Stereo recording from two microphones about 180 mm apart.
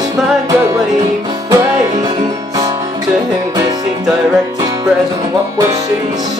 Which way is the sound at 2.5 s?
20° right (ahead or behind).